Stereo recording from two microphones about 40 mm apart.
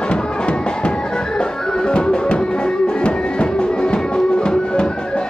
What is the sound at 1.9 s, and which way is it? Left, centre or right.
Music, left.